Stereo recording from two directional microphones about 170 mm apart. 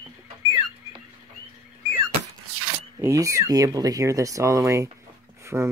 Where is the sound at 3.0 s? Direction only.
20° right (ahead or behind).